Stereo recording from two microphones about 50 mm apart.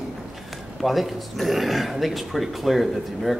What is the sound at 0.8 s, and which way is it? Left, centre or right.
A man's voice, centre.